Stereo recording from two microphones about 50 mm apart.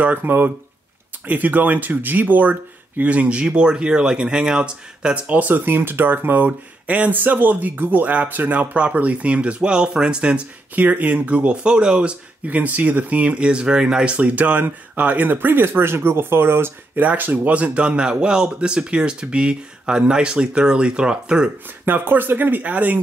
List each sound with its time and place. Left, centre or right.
0.0 s speech: right; by 10.4 s centre
10.8 s speech: right
12.4 s speech: right
15.3 s speech: right
17.0 s speech: right; by 21.5 s centre
21.8 s speech: right